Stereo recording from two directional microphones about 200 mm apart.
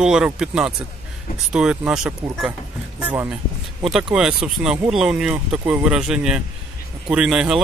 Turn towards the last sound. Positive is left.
turn(degrees=-5)  # may be behind; listen again after turning